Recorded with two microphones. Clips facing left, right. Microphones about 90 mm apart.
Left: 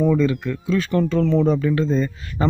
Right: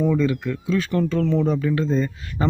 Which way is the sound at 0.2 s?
10° right (ahead or behind).